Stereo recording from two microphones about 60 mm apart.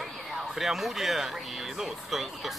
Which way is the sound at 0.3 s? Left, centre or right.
Centre.